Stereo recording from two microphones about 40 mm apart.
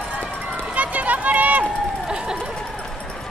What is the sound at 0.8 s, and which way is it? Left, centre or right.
Run, right.